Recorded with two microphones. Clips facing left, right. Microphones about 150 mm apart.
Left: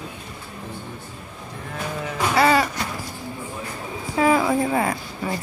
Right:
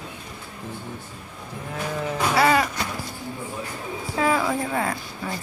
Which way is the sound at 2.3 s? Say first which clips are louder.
Left 2 dB; centre (ahead or behind).